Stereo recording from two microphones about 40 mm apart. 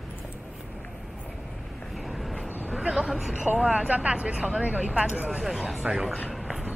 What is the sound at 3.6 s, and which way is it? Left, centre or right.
Speech, right.